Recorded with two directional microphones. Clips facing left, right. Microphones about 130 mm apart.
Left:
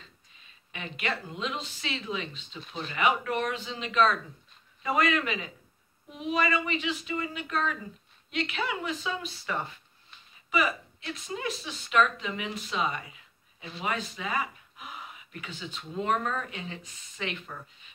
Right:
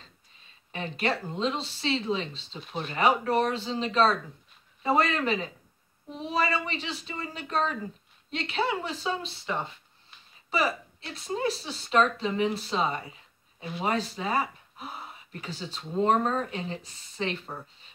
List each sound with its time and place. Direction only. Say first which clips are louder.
0.7 s a woman's voice: right 5 dB; 35° right (ahead or behind)